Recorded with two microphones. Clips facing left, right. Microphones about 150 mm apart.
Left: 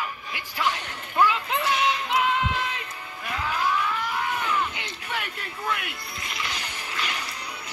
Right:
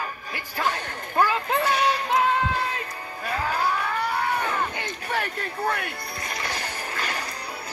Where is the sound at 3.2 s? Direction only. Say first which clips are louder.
Right 2 dB; 40° right (ahead or behind).